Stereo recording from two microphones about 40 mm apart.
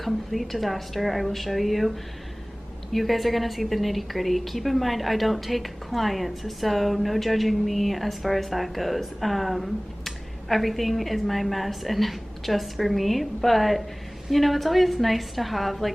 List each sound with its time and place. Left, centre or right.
0.0 s a woman's voice: centre